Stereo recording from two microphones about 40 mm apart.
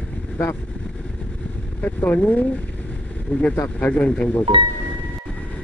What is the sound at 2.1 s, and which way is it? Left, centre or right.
Speech, left.